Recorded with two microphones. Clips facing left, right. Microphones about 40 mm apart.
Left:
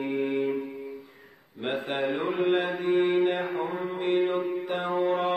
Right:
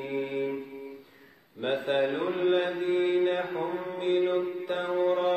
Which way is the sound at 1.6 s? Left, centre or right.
Centre.